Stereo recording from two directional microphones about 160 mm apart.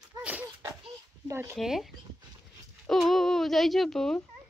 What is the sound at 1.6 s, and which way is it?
Speech, centre (ahead or behind).